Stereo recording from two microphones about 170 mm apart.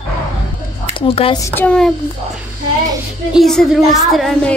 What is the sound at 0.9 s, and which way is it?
Speech, 30° left (ahead or behind).